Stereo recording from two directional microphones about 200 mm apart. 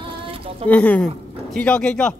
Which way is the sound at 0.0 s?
25° right (ahead or behind).